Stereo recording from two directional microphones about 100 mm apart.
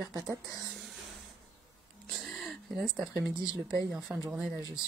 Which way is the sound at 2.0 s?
5° left (ahead or behind).